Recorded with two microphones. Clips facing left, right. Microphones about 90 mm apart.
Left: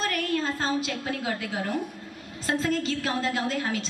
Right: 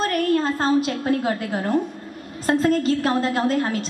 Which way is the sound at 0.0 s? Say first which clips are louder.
Right 7 dB; 45° right (ahead or behind).